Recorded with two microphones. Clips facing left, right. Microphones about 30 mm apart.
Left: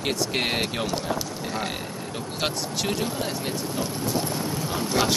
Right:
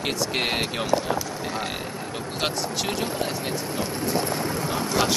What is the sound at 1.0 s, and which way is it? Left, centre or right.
Vehicle, centre.